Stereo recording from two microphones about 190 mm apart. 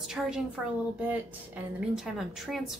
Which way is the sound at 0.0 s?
5° right (ahead or behind).